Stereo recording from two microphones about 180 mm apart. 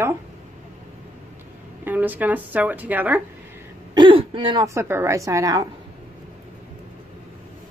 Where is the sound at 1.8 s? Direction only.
10° right (ahead or behind).